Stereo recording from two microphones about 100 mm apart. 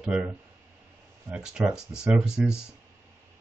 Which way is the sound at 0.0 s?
10° right (ahead or behind).